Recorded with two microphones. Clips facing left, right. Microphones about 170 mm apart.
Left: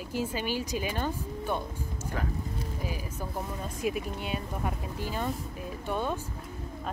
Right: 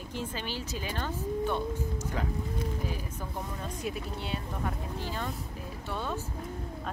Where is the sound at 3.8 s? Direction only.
15° left (ahead or behind).